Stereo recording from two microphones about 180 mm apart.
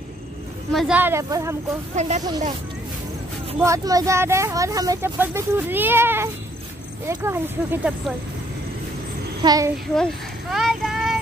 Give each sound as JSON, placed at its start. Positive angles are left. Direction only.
{"t": 0.7, "sound": "speech", "side_deg": -5}
{"t": 2.0, "sound": "speech", "side_deg": -40}
{"t": 3.6, "sound": "speech", "side_deg": -20}
{"t": 9.4, "sound": "a child's voice", "side_deg": -20}
{"t": 9.9, "sound": "a sound", "side_deg": 0}